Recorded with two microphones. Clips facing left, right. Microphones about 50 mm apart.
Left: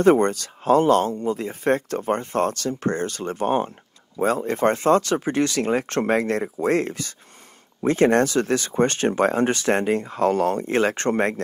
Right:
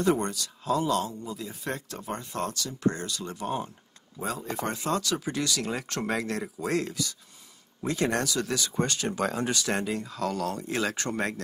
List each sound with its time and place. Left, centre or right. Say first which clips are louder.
0.0 s speech: left 9 dB; left